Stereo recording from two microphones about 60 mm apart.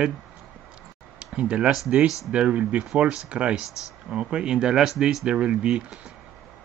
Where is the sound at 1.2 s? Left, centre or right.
Centre.